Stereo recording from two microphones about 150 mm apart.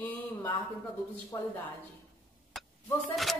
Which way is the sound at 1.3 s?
20° left (ahead or behind).